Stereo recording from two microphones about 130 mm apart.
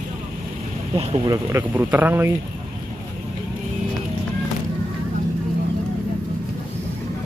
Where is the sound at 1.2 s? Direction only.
25° right (ahead or behind).